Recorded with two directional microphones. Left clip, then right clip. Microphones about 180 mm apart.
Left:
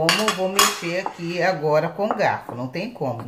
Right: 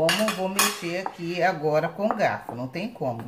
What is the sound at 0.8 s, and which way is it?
Chopping, 15° left (ahead or behind).